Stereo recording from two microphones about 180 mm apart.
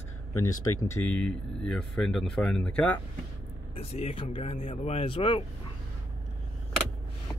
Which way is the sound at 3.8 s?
35° left (ahead or behind).